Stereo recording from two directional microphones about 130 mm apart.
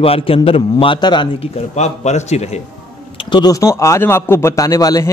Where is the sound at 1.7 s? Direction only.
60° left (ahead or behind).